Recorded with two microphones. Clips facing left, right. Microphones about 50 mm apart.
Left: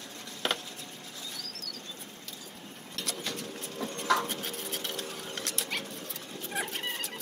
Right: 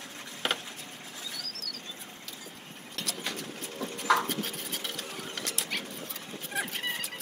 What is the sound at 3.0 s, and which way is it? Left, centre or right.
Bird, centre.